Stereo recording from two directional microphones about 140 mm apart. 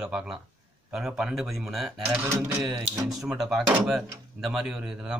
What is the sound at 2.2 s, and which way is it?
Speech, 20° right (ahead or behind).